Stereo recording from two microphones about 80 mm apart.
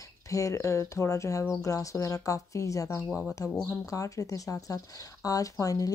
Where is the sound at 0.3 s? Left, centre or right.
Left.